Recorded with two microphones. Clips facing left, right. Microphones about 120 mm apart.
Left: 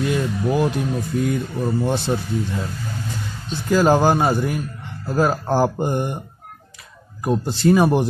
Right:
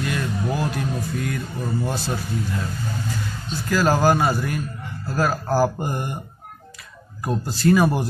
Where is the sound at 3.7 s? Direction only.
25° left (ahead or behind).